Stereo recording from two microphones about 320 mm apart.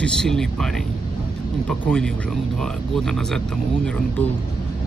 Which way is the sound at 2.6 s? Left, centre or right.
Centre.